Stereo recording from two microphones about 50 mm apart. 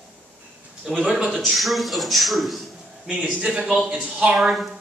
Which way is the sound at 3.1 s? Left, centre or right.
Right.